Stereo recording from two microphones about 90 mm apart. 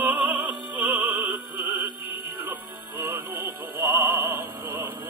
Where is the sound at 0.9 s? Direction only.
20° right (ahead or behind).